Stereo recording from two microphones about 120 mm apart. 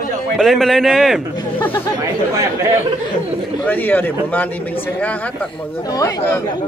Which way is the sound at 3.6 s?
15° left (ahead or behind).